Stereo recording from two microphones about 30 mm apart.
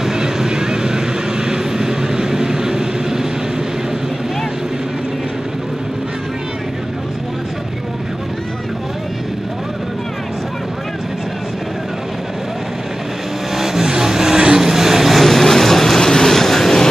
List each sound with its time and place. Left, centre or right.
0.0 s vehicle: centre
13.6 s vehicle: centre
14.7 s vehicle: centre
15.2 s vehicle: centre